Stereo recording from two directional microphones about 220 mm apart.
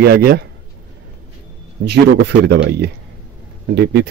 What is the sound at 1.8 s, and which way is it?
Speech, 50° right (ahead or behind).